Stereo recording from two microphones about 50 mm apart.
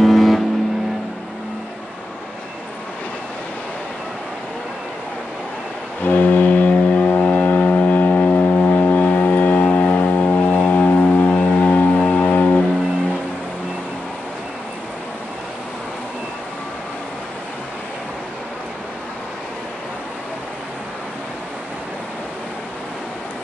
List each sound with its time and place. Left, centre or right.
0.0 s vehicle: centre
6.0 s vehicle: left